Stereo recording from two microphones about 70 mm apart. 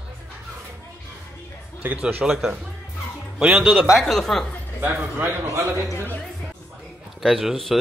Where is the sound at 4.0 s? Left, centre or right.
Centre.